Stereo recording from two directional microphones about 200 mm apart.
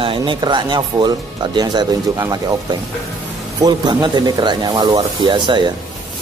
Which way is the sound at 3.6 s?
20° right (ahead or behind).